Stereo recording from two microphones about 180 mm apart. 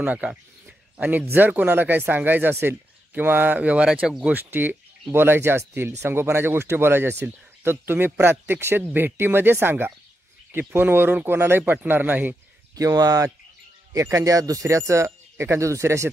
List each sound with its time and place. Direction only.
0.0 s speech: 10° right (ahead or behind)